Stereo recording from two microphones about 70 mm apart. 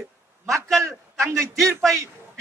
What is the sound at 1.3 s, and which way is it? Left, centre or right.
Speech, right.